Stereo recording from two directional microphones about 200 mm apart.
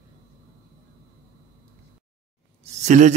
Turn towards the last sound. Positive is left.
turn(degrees=-35)  # may be behind; listen again after turning